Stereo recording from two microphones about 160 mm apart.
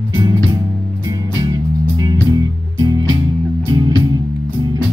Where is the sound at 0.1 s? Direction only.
25° right (ahead or behind).